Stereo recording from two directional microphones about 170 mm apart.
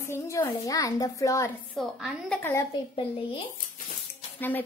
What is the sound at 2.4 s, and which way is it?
Speech, 15° left (ahead or behind).